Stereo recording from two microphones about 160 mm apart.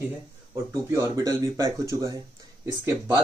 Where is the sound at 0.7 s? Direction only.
20° right (ahead or behind).